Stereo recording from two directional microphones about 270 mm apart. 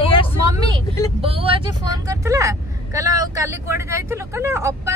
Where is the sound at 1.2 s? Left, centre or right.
Right.